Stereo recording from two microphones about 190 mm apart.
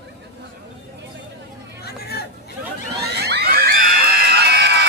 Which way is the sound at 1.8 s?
55° left (ahead or behind).